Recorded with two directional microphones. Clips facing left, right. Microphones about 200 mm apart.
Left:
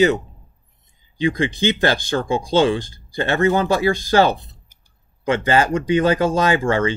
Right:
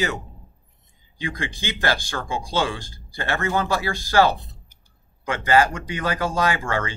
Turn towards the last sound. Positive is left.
turn(degrees=25)  # may be behind; listen again after turning